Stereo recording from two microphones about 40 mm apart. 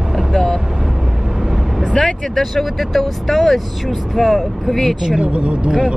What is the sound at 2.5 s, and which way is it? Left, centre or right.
Speech, centre.